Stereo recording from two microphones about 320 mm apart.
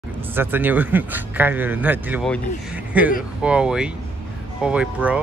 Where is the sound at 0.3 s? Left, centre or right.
Centre.